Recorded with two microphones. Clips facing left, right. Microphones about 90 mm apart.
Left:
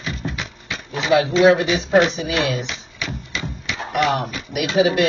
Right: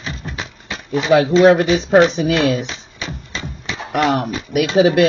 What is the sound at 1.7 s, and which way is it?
Speech, 35° right (ahead or behind).